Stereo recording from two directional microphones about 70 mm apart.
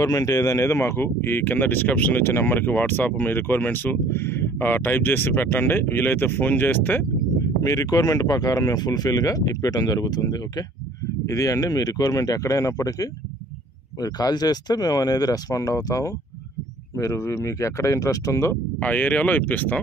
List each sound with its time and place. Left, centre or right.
0.0 s speech: left
7.6 s speech: left
11.2 s speech: left
14.0 s speech: left
18.8 s speech: left